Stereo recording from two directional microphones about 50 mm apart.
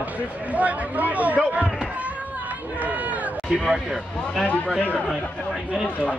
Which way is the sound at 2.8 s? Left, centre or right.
Right.